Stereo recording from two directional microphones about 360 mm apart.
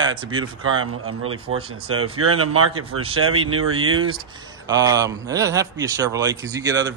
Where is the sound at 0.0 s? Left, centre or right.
Centre.